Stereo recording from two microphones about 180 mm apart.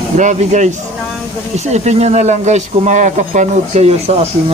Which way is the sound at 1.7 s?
40° right (ahead or behind).